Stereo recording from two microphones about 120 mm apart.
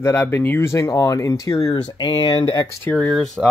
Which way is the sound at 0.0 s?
20° left (ahead or behind).